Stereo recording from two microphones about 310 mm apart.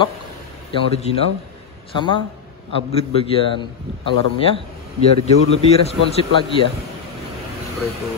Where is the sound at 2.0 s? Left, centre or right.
Centre.